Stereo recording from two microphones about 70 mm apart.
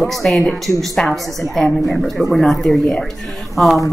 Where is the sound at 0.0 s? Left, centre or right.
Centre.